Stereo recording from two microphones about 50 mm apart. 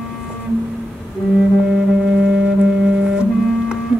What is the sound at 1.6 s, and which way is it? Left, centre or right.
Music, centre.